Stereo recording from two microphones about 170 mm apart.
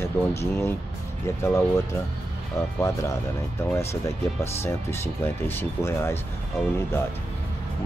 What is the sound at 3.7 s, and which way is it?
Speech, 15° left (ahead or behind).